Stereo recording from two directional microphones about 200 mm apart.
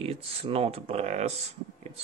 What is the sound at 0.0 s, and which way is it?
Speech, 30° right (ahead or behind).